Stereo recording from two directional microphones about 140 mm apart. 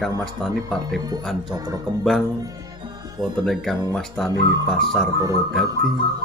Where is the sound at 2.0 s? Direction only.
Centre (ahead or behind).